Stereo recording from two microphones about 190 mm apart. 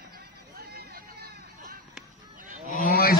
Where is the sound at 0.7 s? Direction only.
55° right (ahead or behind).